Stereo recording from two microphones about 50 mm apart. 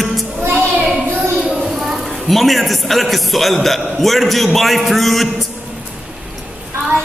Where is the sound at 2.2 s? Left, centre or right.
Centre.